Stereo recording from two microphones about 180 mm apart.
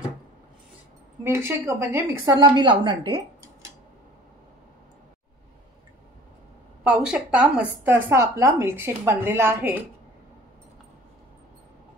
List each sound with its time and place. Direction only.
1.2 s a woman's voice: 15° right (ahead or behind)
6.8 s a woman's voice: 5° right (ahead or behind)